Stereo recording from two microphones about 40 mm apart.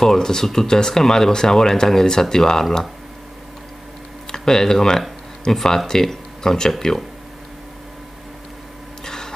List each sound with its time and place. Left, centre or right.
0.0 s speech: centre
4.3 s speech: centre
9.0 s printer: centre